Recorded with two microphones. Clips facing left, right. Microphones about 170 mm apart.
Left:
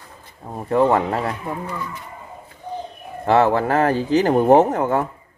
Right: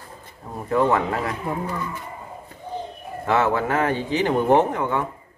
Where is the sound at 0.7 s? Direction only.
30° left (ahead or behind).